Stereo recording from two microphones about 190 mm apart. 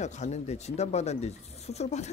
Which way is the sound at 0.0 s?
40° left (ahead or behind).